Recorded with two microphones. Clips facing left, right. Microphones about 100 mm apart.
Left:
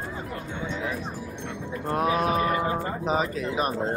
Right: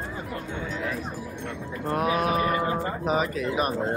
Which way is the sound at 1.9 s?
35° left (ahead or behind).